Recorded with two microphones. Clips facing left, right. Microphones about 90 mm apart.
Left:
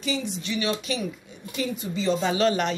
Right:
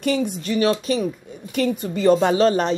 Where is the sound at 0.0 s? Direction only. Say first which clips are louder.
Right 7 dB; 55° right (ahead or behind).